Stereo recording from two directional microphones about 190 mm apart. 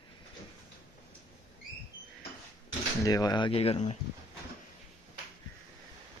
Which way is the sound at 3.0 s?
20° left (ahead or behind).